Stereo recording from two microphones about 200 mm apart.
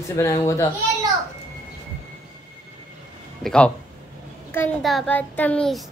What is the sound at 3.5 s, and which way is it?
A child's voice, 5° left (ahead or behind).